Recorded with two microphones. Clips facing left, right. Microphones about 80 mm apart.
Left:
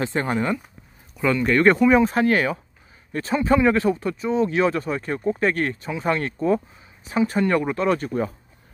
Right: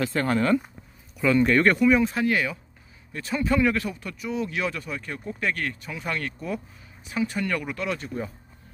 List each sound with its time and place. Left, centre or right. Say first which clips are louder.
0.0 s speech: even; left
1.2 s speech: even; centre
1.8 s speech: left 3 dB; left
2.0 s speech: left 5 dB; left